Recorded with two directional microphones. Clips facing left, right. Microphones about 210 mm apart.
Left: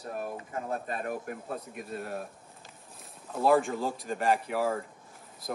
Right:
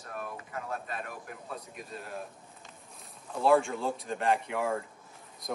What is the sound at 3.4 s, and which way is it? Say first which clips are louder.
Speech: even; centre (ahead or behind).